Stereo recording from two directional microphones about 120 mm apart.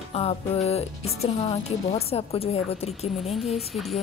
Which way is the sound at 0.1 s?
60° left (ahead or behind).